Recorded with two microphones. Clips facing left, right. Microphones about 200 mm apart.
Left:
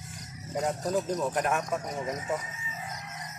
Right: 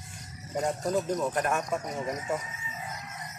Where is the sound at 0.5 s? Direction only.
Centre (ahead or behind).